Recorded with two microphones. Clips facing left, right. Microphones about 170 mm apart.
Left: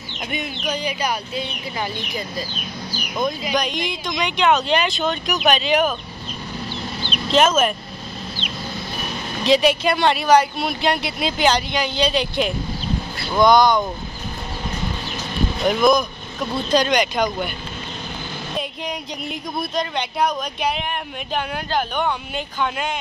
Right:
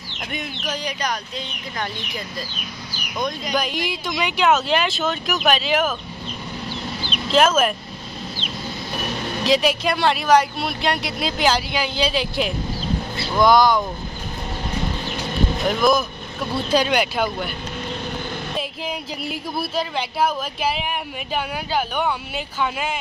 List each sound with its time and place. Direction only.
0.3 s speech: centre (ahead or behind)
7.0 s a sound: 5° right (ahead or behind)
9.4 s speech: centre (ahead or behind)
15.6 s speech: centre (ahead or behind)
18.6 s speech: 5° right (ahead or behind)